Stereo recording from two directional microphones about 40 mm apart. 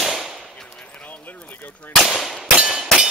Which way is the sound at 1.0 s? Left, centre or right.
Left.